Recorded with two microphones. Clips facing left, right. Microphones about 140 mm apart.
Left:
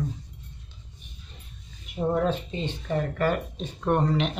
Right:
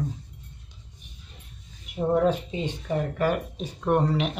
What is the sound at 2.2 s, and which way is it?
Speech, 10° right (ahead or behind).